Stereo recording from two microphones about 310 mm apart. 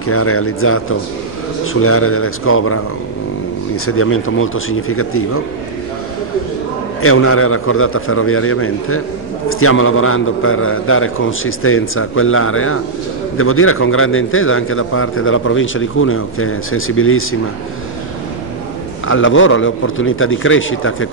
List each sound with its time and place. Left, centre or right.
0.0 s a man's voice: left
7.0 s a man's voice: left
19.0 s a man's voice: left